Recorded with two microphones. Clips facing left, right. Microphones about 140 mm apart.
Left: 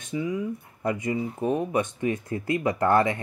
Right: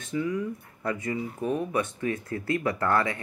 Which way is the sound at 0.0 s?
15° left (ahead or behind).